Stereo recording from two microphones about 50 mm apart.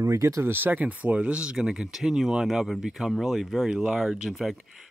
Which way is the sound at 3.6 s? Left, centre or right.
Centre.